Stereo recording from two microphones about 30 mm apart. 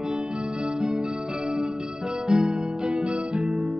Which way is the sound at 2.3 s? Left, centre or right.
Right.